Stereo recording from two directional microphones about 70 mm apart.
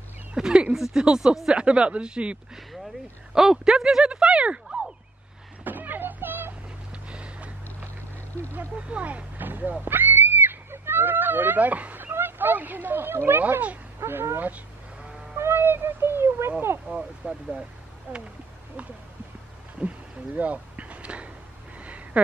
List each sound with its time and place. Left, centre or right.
0.3 s speech: centre
5.6 s a sound: right
6.9 s vehicle: centre
8.5 s speech: centre
13.9 s speech: right
14.5 s livestock: centre
15.3 s speech: right
16.9 s speech: centre
18.1 s speech: right
19.8 s a sound: right